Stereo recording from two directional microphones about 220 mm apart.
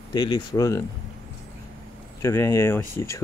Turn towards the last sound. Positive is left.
turn(degrees=10)  # may be behind; listen again after turning